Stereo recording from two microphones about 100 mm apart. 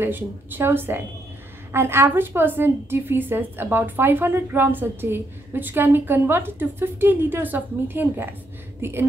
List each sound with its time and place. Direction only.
0.0 s a woman's voice: 20° right (ahead or behind)